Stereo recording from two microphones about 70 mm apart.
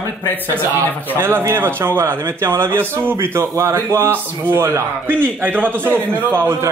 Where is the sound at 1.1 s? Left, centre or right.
Right.